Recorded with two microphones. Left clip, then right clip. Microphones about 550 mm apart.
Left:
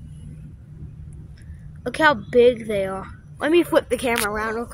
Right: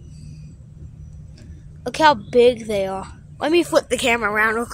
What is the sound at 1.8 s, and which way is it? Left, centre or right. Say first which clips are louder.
A woman's voice: right 3 dB; left.